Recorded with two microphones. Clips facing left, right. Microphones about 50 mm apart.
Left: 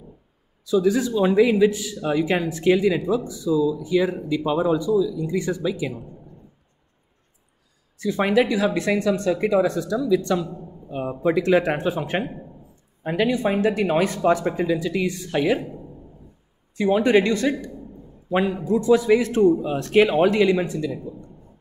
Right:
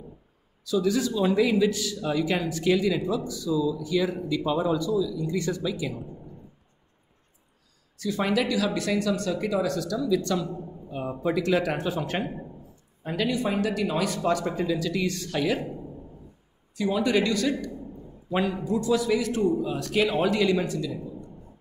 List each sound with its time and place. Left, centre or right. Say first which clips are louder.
0.7 s speech: left 5 dB; left
8.0 s speech: left 6 dB; left
16.7 s speech: left 6 dB; left
18.3 s speech: left 5 dB; centre